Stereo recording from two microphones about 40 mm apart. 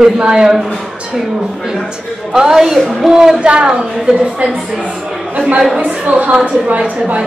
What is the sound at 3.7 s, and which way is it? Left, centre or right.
Speech, centre.